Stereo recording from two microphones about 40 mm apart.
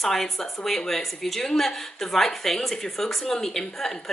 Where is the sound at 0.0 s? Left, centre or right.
Centre.